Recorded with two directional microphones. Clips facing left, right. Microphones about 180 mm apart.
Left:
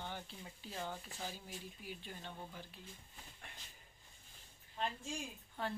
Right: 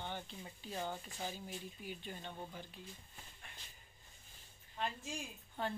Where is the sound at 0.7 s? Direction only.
15° right (ahead or behind).